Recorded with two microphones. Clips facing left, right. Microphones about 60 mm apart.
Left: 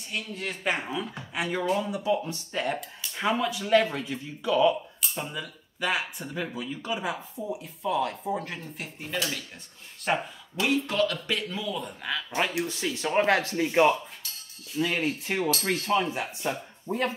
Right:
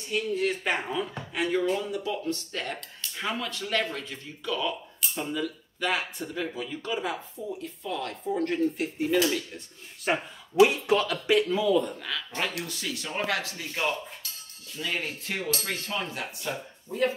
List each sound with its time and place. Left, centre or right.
0.1 s speech: centre
12.6 s speech: left
13.2 s speech: left
13.7 s speech: left
14.7 s speech: centre
16.9 s speech: left